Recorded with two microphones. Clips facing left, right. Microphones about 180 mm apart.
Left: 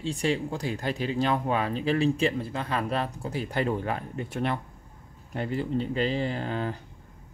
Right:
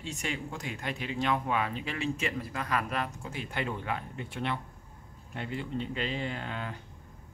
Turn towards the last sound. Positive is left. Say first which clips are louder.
# left 7 dB
turn(degrees=35)  # may be behind; listen again after turning